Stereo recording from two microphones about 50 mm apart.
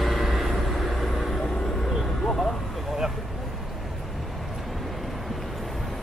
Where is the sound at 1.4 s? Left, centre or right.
Centre.